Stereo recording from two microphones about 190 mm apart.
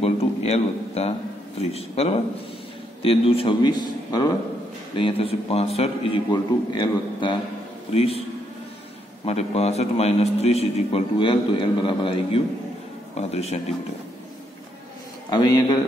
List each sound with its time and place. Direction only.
0.0 s a sound: 35° left (ahead or behind)
1.6 s a man's voice: 35° left (ahead or behind)
9.2 s a man's voice: 35° left (ahead or behind)
15.2 s a man's voice: 20° left (ahead or behind)